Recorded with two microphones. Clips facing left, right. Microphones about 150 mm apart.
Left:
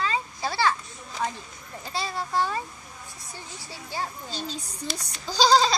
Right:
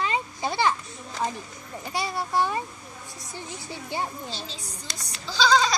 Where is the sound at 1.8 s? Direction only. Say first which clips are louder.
Right 2 dB; 15° right (ahead or behind).